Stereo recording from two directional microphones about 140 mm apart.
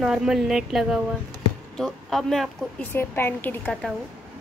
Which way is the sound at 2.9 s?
15° left (ahead or behind).